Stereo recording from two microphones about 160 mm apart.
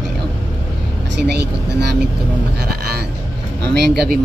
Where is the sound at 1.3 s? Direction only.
90° right.